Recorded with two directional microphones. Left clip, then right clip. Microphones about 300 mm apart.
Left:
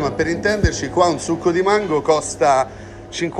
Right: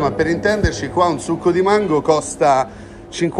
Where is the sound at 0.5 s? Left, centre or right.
Centre.